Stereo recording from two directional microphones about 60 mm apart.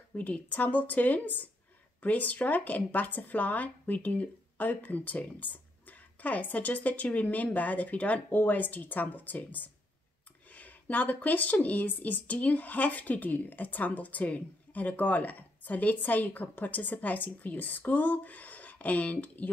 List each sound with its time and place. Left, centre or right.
0.1 s speech: left